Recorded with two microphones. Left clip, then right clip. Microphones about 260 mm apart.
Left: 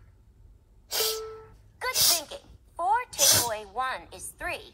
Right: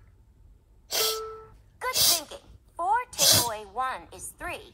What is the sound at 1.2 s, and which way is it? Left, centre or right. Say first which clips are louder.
Music: right 1 dB; centre.